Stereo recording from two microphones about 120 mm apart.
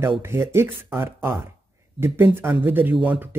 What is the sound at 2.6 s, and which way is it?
Speech, 15° right (ahead or behind).